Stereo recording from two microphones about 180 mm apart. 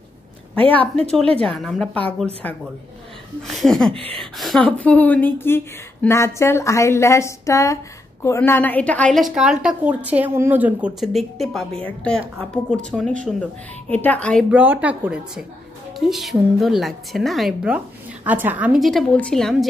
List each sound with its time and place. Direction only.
0.6 s a woman's voice: 10° left (ahead or behind)
3.9 s a sound: 30° right (ahead or behind)
4.4 s a woman's voice: 5° left (ahead or behind)
14.5 s a woman's voice: 10° right (ahead or behind)